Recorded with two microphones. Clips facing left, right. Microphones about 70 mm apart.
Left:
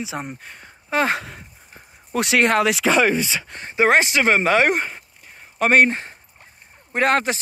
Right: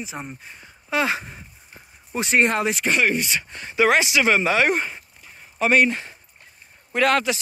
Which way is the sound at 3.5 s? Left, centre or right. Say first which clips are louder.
Left 2 dB; left.